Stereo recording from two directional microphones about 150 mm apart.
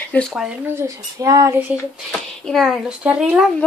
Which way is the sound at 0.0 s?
10° left (ahead or behind).